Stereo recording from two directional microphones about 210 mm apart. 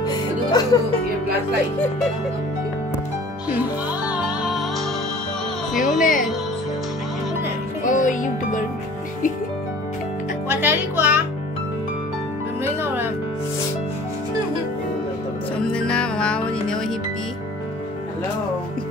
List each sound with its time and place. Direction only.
0.0 s music: 20° left (ahead or behind)
4.1 s music: 5° right (ahead or behind)
5.8 s speech: 40° left (ahead or behind)
7.8 s a child's voice: 40° left (ahead or behind)
10.5 s speech: 10° right (ahead or behind)
12.6 s music: 10° right (ahead or behind)
15.6 s music: 5° left (ahead or behind)